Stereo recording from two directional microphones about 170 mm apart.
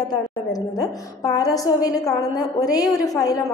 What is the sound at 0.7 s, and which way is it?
A woman's voice, 20° left (ahead or behind).